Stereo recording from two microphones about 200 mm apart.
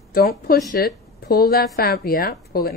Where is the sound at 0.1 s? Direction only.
50° left (ahead or behind).